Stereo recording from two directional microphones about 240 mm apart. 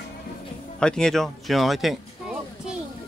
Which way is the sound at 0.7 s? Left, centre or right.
Centre.